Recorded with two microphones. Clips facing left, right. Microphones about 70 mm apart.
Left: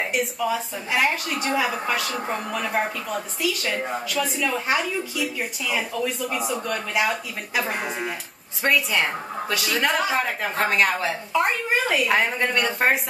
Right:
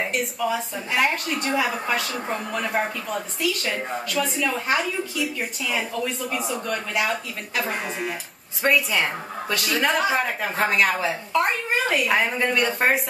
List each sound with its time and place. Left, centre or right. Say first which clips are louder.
0.0 s speech: even; centre